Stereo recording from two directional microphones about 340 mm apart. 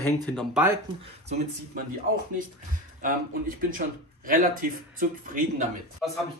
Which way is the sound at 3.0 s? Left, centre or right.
Right.